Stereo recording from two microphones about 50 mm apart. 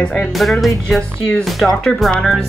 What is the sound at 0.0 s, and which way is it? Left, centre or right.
Speech, centre.